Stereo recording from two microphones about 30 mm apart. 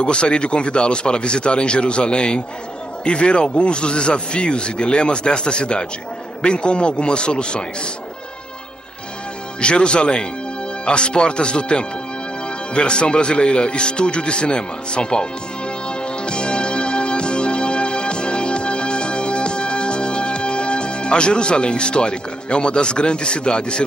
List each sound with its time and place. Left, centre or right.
0.0 s speech: left
9.6 s speech: left
15.9 s music: left